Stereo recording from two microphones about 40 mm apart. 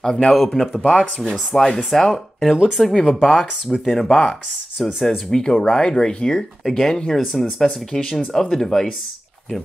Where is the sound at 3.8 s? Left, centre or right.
Centre.